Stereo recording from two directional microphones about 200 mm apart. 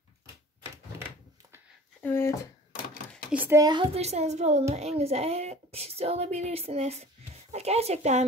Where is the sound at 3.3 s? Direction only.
10° right (ahead or behind).